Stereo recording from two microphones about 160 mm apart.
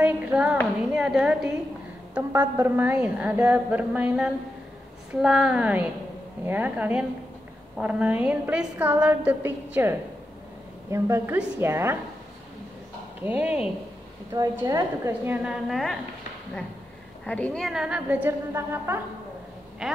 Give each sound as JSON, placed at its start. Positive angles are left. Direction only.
{"t": 0.0, "sound": "a woman's voice", "side_deg": -5}
{"t": 13.2, "sound": "a woman's voice", "side_deg": -10}
{"t": 14.3, "sound": "a woman's voice", "side_deg": -20}
{"t": 17.3, "sound": "a woman's voice", "side_deg": 5}
{"t": 19.8, "sound": "a woman's voice", "side_deg": -5}